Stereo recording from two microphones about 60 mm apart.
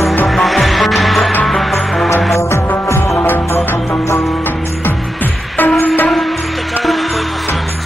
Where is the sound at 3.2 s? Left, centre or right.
Left.